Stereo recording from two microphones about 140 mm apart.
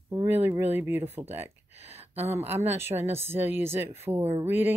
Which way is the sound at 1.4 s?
45° right (ahead or behind).